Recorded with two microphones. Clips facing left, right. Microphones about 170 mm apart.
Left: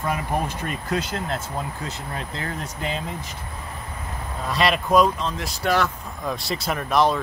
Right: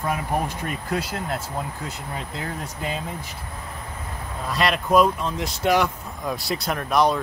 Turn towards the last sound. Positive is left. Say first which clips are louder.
# even
turn(degrees=0)  # may be behind; listen again after turning